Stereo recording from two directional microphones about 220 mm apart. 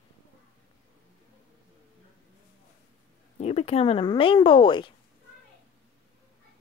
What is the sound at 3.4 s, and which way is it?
Speech, 30° left (ahead or behind).